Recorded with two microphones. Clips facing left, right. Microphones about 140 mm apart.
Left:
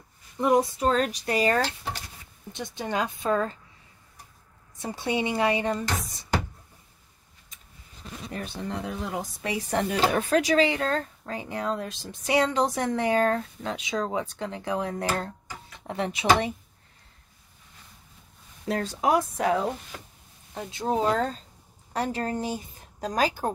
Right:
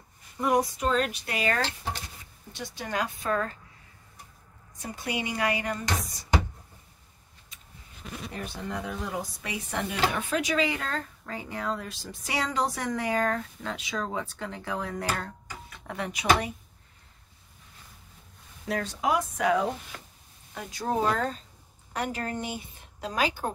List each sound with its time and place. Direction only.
0.4 s speech: 25° left (ahead or behind)
0.7 s a woman's voice: 35° left (ahead or behind)
2.5 s speech: 20° left (ahead or behind)
4.8 s speech: 25° left (ahead or behind)
8.7 s speech: 25° left (ahead or behind)
18.7 s a woman's voice: 30° left (ahead or behind)
20.5 s a woman's voice: 20° left (ahead or behind); by 23.5 s 35° left (ahead or behind)